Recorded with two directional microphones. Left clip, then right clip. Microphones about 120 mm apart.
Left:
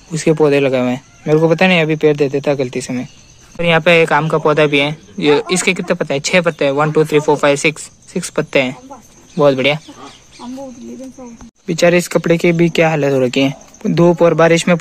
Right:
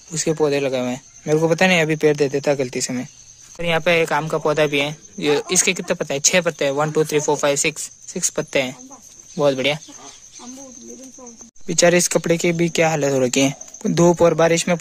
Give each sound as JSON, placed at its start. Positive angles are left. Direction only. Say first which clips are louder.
{"t": 0.1, "sound": "speech", "louder": "left 7 dB", "side_deg": -15}
{"t": 1.2, "sound": "speech", "louder": "left 5 dB", "side_deg": -35}
{"t": 3.5, "sound": "a man's voice", "louder": "left 7 dB", "side_deg": -15}
{"t": 11.6, "sound": "speech", "louder": "left 3 dB", "side_deg": -35}
{"t": 12.2, "sound": "a man's voice", "louder": "left 6 dB", "side_deg": -20}
{"t": 13.1, "sound": "speech", "louder": "left 4 dB", "side_deg": -40}
{"t": 14.3, "sound": "speech", "louder": "left 6 dB", "side_deg": -15}